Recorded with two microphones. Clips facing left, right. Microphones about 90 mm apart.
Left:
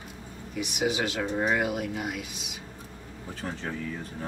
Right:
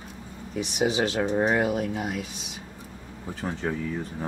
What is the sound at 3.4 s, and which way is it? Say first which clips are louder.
Speech: right 5 dB; 15° right (ahead or behind).